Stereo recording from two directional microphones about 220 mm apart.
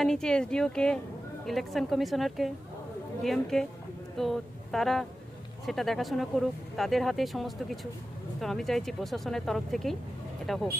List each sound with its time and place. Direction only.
0.0 s speech: 5° left (ahead or behind)